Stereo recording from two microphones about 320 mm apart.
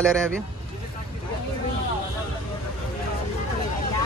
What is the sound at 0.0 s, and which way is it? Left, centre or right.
Speech, centre.